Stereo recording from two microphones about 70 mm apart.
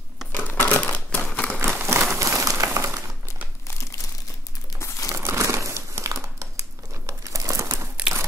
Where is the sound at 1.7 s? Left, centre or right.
Right.